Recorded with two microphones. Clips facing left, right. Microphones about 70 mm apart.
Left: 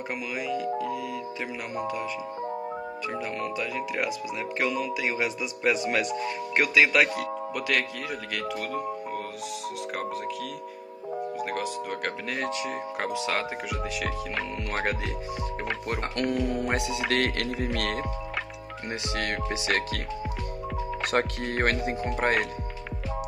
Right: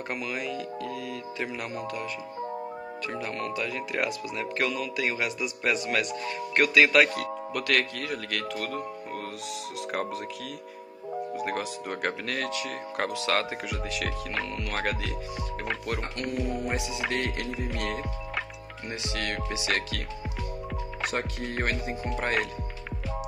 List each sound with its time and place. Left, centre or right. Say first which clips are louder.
0.1 s speech: left 2 dB; centre
3.1 s speech: left 1 dB; centre
4.6 s speech: left 1 dB; centre
6.2 s speech: even; centre
11.4 s speech: left 1 dB; centre
12.4 s speech: left 2 dB; left
13.0 s speech: right 2 dB; centre
14.7 s speech: left 2 dB; left
16.0 s speech: left 4 dB; left
19.1 s speech: left 2 dB; left
21.1 s speech: left 8 dB; left
22.0 s speech: left 2 dB; left